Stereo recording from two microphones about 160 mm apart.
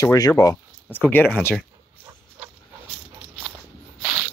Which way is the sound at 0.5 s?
10° left (ahead or behind).